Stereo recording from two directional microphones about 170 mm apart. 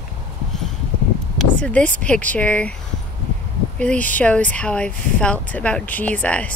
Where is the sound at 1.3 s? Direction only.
5° left (ahead or behind).